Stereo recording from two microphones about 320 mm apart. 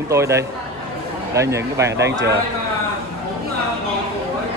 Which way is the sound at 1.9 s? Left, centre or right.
Right.